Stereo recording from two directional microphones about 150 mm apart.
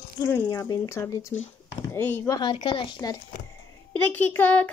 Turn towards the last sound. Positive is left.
turn(degrees=10)  # may be behind; listen again after turning